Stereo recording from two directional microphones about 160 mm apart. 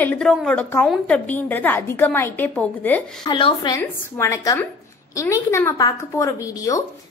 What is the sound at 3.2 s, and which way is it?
Speech, 30° left (ahead or behind).